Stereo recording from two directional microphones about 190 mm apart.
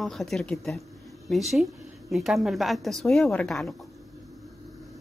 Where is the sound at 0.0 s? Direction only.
Centre (ahead or behind).